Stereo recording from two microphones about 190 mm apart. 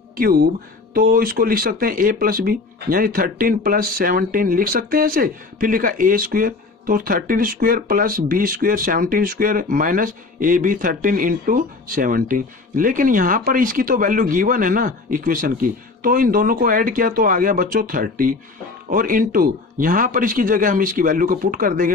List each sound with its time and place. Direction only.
0.2 s speech: 55° right (ahead or behind)